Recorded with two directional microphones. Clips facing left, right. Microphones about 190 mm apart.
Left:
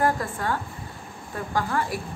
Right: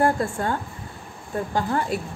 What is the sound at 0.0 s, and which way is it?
A woman's voice, 30° right (ahead or behind).